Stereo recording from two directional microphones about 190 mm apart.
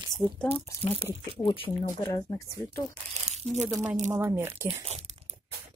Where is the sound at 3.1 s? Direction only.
35° right (ahead or behind).